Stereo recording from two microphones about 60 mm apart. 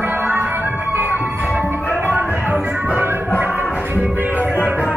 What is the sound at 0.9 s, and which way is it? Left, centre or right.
Music, right.